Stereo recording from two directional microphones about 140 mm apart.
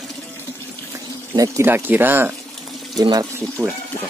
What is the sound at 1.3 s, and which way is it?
Speech, 20° right (ahead or behind).